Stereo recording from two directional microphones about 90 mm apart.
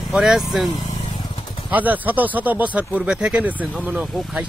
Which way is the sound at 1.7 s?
20° right (ahead or behind).